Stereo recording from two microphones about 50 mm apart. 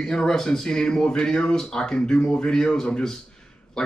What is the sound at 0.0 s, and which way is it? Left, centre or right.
Speech, centre.